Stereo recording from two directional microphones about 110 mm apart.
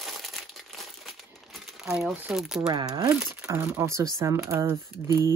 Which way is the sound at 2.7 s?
45° right (ahead or behind).